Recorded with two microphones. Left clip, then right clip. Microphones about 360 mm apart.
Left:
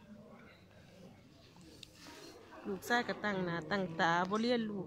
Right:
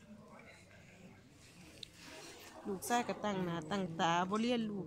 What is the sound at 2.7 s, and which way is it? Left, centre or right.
A woman's voice, centre.